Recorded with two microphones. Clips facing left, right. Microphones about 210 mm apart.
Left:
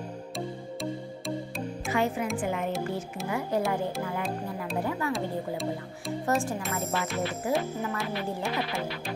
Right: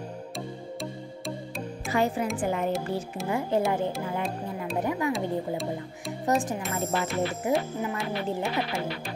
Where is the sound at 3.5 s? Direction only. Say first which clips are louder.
Right 3 dB; 25° right (ahead or behind).